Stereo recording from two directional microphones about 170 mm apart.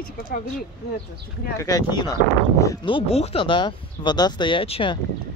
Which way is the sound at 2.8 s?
35° left (ahead or behind).